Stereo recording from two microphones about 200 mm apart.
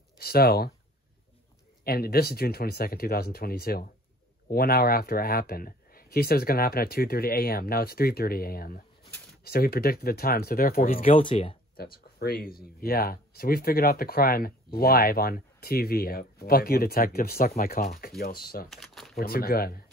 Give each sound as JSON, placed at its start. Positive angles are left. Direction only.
{"t": 0.2, "sound": "speech", "side_deg": 50}
{"t": 1.9, "sound": "speech", "side_deg": 50}
{"t": 11.1, "sound": "speech", "side_deg": 30}
{"t": 11.7, "sound": "speech", "side_deg": 50}
{"t": 18.7, "sound": "crumpling", "side_deg": 0}
{"t": 19.1, "sound": "speech", "side_deg": 50}